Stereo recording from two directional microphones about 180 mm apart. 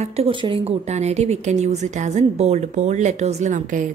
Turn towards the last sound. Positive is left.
turn(degrees=-40)  # may be behind; listen again after turning